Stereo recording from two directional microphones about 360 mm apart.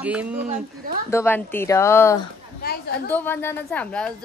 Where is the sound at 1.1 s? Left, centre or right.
Centre.